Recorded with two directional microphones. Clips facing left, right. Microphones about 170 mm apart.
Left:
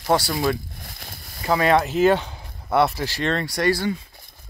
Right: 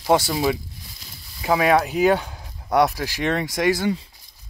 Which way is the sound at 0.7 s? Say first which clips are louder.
Left 4 dB; 55° left (ahead or behind).